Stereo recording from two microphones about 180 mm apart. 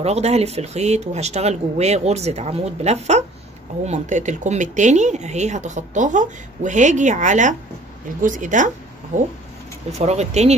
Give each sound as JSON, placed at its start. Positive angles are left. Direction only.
{"t": 0.0, "sound": "speech", "side_deg": -35}